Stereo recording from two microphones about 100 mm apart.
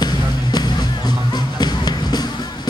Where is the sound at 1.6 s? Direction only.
45° left (ahead or behind).